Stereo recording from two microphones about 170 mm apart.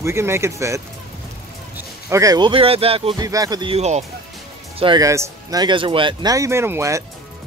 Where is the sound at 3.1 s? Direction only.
20° right (ahead or behind); by 4.1 s 40° right (ahead or behind).